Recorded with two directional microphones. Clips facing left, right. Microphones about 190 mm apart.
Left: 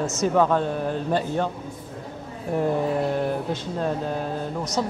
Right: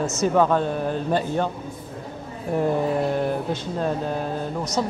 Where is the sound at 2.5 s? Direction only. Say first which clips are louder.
Right 1 dB; 20° right (ahead or behind).